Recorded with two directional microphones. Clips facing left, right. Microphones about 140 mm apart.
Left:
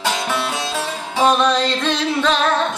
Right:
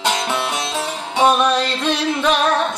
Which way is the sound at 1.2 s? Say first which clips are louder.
Even; 10° right (ahead or behind).